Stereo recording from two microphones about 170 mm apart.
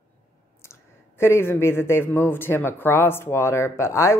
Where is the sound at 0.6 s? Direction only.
15° left (ahead or behind).